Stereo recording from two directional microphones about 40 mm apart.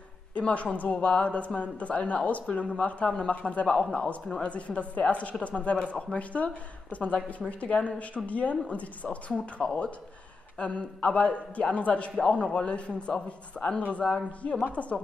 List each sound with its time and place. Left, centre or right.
0.3 s a woman's voice: left
3.6 s a man's voice: centre